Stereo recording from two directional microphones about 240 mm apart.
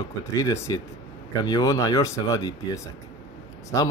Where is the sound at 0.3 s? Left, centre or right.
Centre.